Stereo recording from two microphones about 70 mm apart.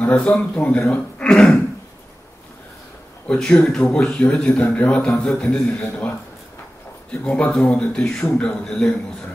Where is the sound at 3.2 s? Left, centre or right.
Centre.